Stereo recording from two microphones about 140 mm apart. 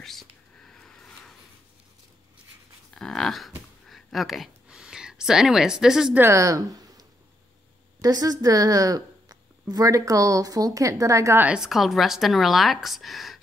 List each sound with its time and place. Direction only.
0.0 s whispering: centre (ahead or behind)
2.9 s a sound: 5° left (ahead or behind)
6.1 s speech: 20° right (ahead or behind)
11.4 s speech: 5° right (ahead or behind)